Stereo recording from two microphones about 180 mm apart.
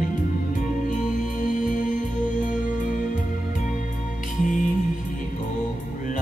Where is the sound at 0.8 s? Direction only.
45° left (ahead or behind).